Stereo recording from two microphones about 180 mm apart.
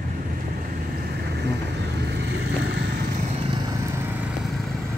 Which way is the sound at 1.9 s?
65° right (ahead or behind).